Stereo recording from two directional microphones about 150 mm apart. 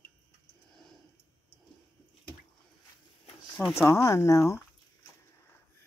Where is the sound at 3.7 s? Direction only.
20° left (ahead or behind).